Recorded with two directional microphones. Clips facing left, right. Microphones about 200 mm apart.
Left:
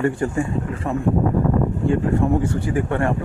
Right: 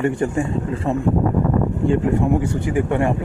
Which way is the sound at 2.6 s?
15° right (ahead or behind).